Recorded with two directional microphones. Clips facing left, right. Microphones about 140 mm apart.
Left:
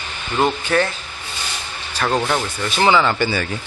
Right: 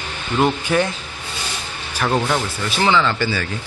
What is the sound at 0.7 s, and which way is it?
Speech, 15° right (ahead or behind).